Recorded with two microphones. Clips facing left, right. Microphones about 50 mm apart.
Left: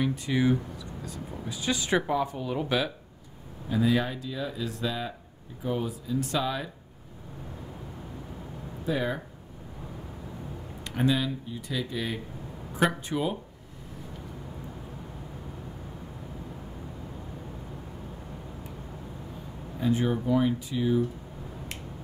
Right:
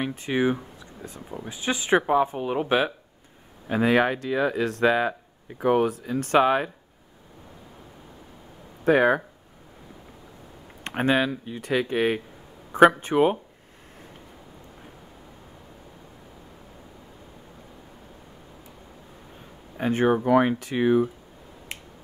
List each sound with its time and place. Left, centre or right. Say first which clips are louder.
0.0 s speech: right 2 dB; right
3.6 s speech: right 5 dB; right
8.8 s speech: right 10 dB; right
10.8 s speech: right 4 dB; right
19.8 s speech: right 5 dB; right